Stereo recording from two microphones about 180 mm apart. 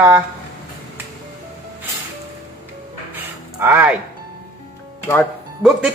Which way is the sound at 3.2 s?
10° right (ahead or behind).